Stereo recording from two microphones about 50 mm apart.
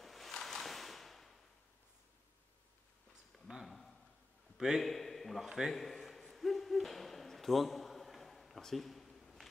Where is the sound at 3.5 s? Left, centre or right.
Right.